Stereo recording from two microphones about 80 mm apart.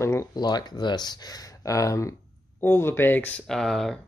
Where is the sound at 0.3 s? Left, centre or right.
Left.